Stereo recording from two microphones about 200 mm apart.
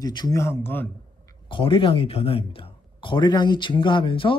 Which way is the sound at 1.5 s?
25° left (ahead or behind).